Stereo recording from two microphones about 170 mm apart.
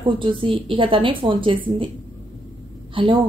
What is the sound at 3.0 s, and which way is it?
Speech, 30° right (ahead or behind).